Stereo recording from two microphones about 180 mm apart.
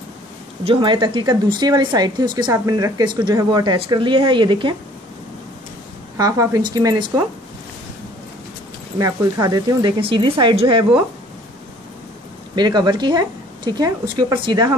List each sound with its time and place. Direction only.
0.7 s speech: 25° right (ahead or behind)
6.1 s speech: 20° right (ahead or behind)
8.9 s speech: 20° right (ahead or behind)
12.5 s a woman's voice: 25° right (ahead or behind)